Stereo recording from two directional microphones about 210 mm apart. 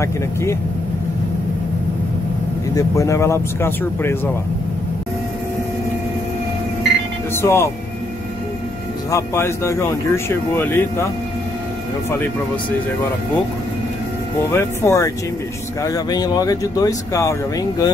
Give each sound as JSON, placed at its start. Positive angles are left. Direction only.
{"t": 0.0, "sound": "speech", "side_deg": 15}
{"t": 2.7, "sound": "speech", "side_deg": 15}
{"t": 7.4, "sound": "speech", "side_deg": 15}
{"t": 9.1, "sound": "speech", "side_deg": 10}
{"t": 14.5, "sound": "speech", "side_deg": 10}